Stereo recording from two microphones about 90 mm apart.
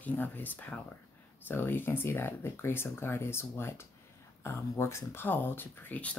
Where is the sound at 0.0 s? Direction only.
20° left (ahead or behind).